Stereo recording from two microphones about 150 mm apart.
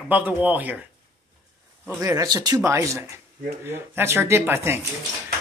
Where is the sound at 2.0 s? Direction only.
25° right (ahead or behind).